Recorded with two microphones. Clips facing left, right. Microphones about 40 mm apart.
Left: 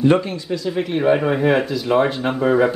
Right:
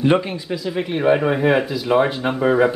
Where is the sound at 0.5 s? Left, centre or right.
Centre.